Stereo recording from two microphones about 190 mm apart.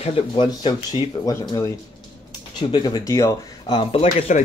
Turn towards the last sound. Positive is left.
turn(degrees=30)  # may be behind; listen again after turning